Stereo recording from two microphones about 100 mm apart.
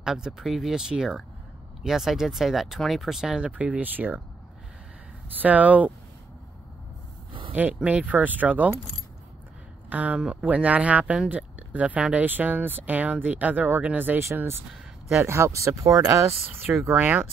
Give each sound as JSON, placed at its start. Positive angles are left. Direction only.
{"t": 0.0, "sound": "speech", "side_deg": -5}
{"t": 5.4, "sound": "speech", "side_deg": -15}
{"t": 7.5, "sound": "speech", "side_deg": -15}
{"t": 9.8, "sound": "speech", "side_deg": -15}
{"t": 14.7, "sound": "a sound", "side_deg": -5}
{"t": 15.2, "sound": "speech", "side_deg": -30}
{"t": 16.8, "sound": "speech", "side_deg": -15}